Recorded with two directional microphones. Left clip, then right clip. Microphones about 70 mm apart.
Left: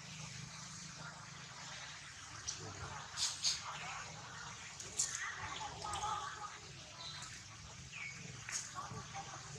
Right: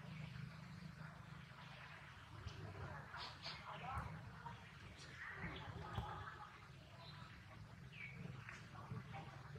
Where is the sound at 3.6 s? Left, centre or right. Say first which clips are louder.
Left 4 dB; left.